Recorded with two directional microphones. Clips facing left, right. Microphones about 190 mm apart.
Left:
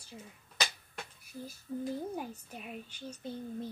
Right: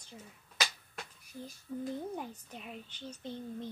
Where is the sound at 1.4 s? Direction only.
5° left (ahead or behind).